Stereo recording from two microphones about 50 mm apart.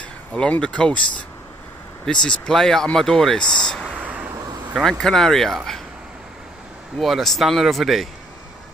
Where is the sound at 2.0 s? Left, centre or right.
Centre.